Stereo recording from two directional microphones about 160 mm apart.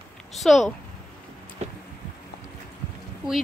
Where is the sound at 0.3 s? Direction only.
Centre (ahead or behind).